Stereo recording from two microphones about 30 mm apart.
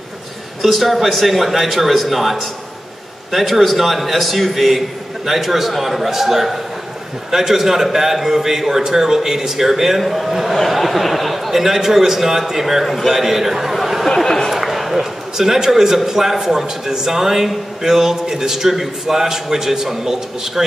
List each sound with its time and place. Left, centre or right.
0.6 s a man's voice: centre
11.5 s a man's voice: centre
14.0 s speech: centre
14.5 s a sound: centre
16.1 s a man's voice: centre